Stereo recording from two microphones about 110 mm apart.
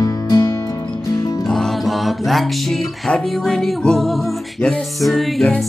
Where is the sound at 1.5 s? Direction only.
Centre (ahead or behind).